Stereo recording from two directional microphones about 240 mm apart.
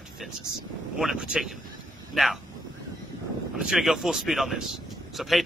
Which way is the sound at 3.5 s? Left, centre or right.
Centre.